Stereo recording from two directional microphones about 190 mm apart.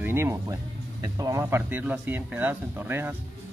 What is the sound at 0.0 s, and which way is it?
Speech, 15° right (ahead or behind).